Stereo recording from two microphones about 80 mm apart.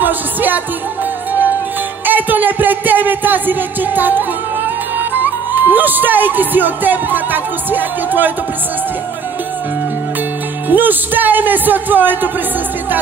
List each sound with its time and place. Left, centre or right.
0.0 s music: right
2.0 s music: right
7.7 s a man's voice: right
10.7 s a man's voice: right